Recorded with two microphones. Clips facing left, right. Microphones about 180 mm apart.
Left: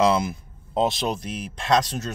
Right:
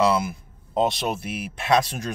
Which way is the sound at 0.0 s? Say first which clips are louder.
Left 1 dB; 5° right (ahead or behind).